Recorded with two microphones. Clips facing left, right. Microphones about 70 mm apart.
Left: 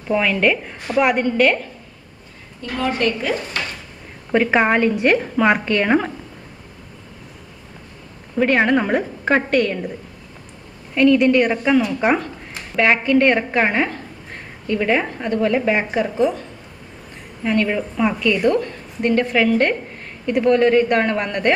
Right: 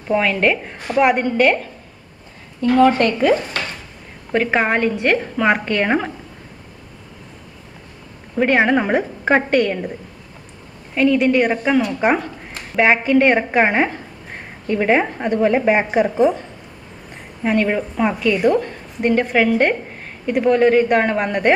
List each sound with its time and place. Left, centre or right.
0.1 s a woman's voice: centre
2.6 s speech: right
4.3 s a woman's voice: centre
8.4 s a woman's voice: centre
11.0 s a woman's voice: centre
12.7 s a woman's voice: centre